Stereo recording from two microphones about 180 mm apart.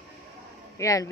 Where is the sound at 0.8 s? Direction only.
15° left (ahead or behind).